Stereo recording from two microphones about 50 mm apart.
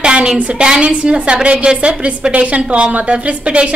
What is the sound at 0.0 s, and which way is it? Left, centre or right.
A woman's voice, centre.